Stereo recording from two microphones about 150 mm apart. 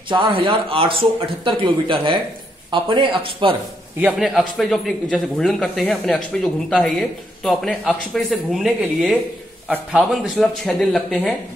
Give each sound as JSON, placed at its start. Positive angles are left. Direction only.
{"t": 0.1, "sound": "a man's voice", "side_deg": -35}
{"t": 4.0, "sound": "speech", "side_deg": 0}